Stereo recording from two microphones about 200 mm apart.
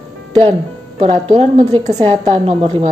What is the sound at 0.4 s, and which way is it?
A woman's voice, 30° right (ahead or behind).